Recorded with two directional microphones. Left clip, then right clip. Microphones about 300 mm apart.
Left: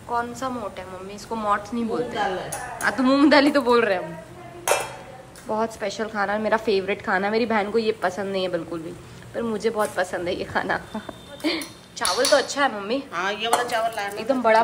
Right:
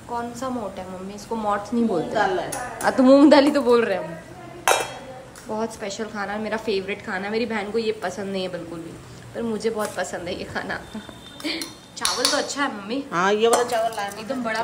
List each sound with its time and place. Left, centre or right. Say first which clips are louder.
0.1 s a woman's voice: left 2 dB; centre
4.7 s chink: right 3 dB; centre
5.5 s a woman's voice: left 3 dB; centre
13.1 s a woman's voice: right 7 dB; right; by 14.1 s centre
14.1 s speech: left 8 dB; centre